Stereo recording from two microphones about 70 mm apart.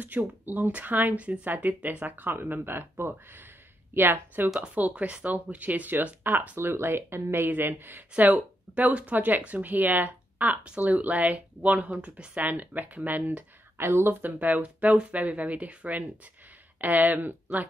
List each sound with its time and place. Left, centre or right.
0.0 s speech: right